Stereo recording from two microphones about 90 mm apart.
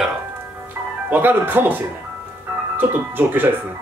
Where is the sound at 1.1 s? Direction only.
20° right (ahead or behind).